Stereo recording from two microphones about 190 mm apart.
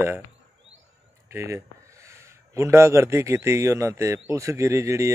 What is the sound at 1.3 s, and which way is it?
A man's voice, 15° right (ahead or behind).